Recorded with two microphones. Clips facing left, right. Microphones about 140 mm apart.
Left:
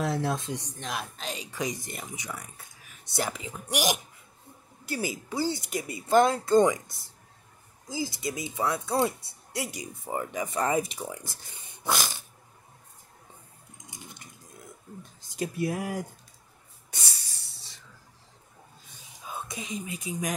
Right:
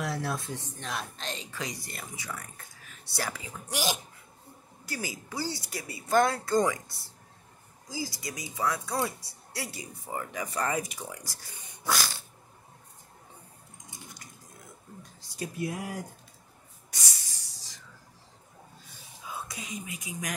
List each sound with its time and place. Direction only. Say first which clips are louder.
0.0 s speech: left 4 dB; 20° left (ahead or behind)
3.1 s speech: left 4 dB; 20° left (ahead or behind)
7.9 s speech: left 5 dB; 20° left (ahead or behind)
13.8 s coin: left 2 dB; 25° left (ahead or behind)
15.2 s speech: left 4 dB; 25° left (ahead or behind)
16.9 s a sound: left 1 dB; 30° left (ahead or behind)
19.2 s speech: left 2 dB; 20° left (ahead or behind)